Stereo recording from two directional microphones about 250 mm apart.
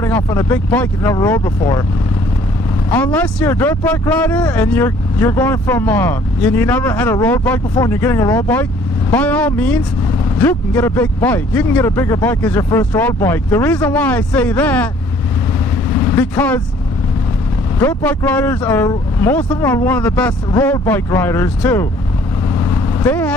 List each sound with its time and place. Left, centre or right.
0.0 s speech: centre
2.9 s speech: centre
16.2 s speech: centre
17.7 s speech: centre
23.0 s speech: centre